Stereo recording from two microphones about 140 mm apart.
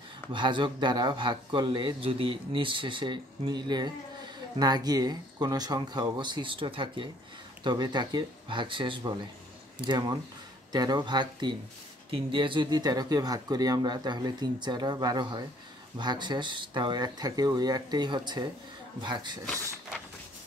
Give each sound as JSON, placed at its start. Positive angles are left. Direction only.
{"t": 0.3, "sound": "speech", "side_deg": -35}